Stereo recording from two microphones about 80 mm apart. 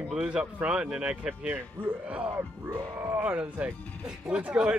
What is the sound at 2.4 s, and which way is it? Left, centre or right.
Music, right.